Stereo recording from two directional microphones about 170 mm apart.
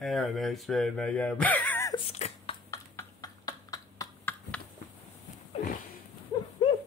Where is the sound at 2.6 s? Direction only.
20° left (ahead or behind).